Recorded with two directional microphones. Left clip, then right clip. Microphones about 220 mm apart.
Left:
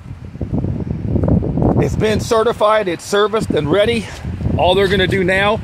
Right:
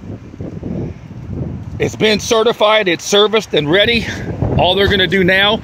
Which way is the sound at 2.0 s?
25° right (ahead or behind).